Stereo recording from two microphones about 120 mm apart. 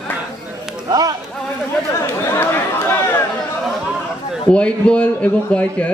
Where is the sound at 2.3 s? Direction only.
20° left (ahead or behind).